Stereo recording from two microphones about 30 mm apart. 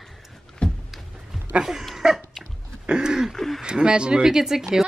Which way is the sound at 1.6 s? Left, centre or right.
Centre.